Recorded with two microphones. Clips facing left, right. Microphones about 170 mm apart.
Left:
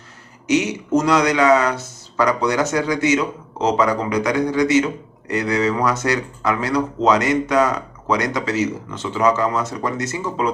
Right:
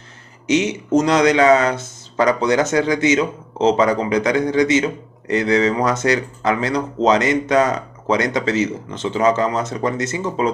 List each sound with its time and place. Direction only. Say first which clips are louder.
0.5 s speech: right 1 dB; 20° right (ahead or behind)